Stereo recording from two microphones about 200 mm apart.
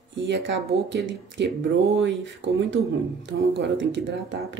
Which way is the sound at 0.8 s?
65° right (ahead or behind).